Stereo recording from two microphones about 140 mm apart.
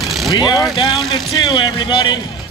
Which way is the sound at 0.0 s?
Centre (ahead or behind).